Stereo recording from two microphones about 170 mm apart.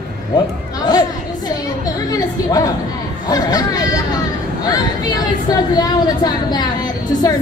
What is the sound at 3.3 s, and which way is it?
Chatter, 25° left (ahead or behind).